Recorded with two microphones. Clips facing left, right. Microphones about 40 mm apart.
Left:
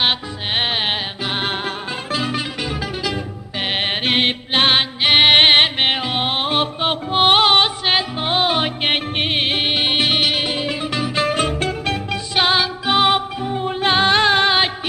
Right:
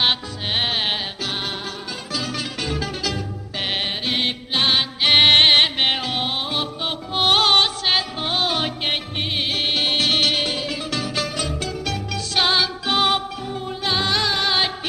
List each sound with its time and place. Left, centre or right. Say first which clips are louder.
0.6 s music: left 2 dB; left
2.6 s music: left 2 dB; centre
3.6 s music: left 3 dB; left
3.9 s mantra: left 5 dB; left
5.0 s music: left 2 dB; centre
6.2 s music: left 5 dB; left
8.9 s music: left 5 dB; left; by 10.6 s centre
10.6 s music: left 4 dB; left
11.2 s music: left 7 dB; left
12.4 s music: left 2 dB; centre